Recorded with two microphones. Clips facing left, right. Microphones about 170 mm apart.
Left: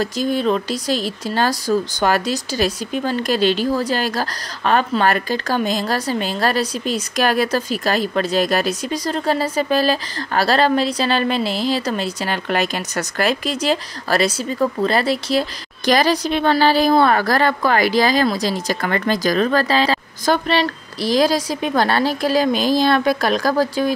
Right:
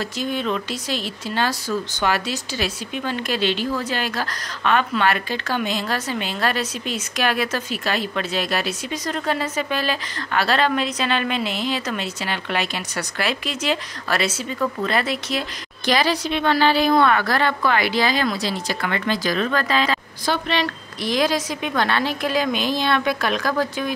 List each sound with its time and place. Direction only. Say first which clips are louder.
0.0 s speech: left 6 dB; 40° left (ahead or behind)